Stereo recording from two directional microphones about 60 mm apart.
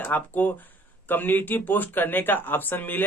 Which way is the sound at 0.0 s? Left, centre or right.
Left.